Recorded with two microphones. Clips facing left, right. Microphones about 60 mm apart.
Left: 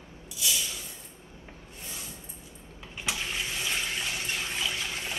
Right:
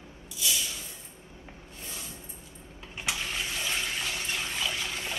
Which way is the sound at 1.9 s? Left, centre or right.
Right.